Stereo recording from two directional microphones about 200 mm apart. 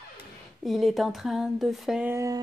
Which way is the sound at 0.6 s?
Centre (ahead or behind).